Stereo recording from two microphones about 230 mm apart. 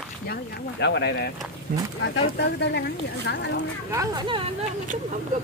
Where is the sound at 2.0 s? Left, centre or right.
Left.